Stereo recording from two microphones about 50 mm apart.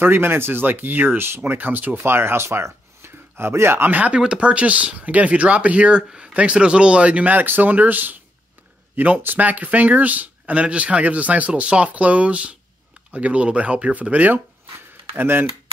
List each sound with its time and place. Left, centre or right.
0.0 s speech: right
2.0 s speech: right
4.1 s speech: right
15.1 s speech: right